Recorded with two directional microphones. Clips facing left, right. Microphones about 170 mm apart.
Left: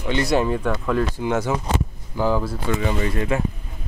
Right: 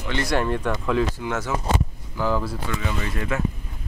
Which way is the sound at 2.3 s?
10° left (ahead or behind).